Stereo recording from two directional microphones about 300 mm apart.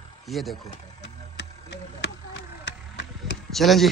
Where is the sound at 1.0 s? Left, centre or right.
Left.